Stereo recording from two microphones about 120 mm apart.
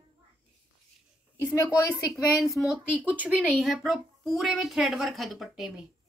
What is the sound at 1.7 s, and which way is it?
Speech, 30° left (ahead or behind).